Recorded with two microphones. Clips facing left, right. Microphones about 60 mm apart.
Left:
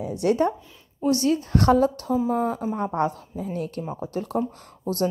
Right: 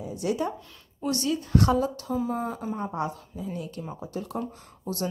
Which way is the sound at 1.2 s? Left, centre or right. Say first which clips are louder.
Left 1 dB; left.